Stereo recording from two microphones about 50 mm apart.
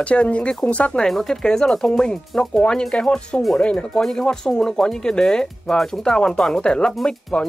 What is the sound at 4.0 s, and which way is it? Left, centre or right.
Speech, centre.